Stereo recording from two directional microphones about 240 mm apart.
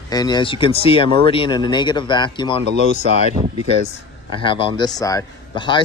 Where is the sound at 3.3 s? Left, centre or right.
Right.